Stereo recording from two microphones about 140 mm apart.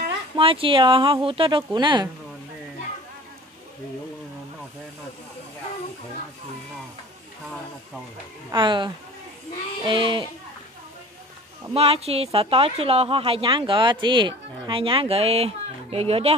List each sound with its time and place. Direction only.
0.4 s speech: 40° right (ahead or behind)
8.5 s speech: 35° right (ahead or behind)
11.7 s a woman's voice: 45° right (ahead or behind)